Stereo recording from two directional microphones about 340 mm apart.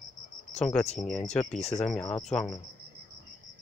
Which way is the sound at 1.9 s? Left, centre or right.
Centre.